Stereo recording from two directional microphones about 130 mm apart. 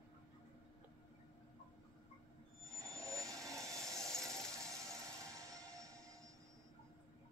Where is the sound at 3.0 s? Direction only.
25° right (ahead or behind).